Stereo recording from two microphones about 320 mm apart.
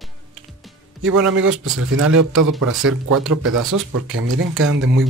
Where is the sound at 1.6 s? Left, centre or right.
Right.